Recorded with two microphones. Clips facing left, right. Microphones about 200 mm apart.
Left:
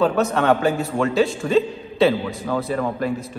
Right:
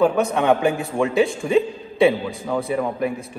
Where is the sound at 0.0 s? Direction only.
15° right (ahead or behind).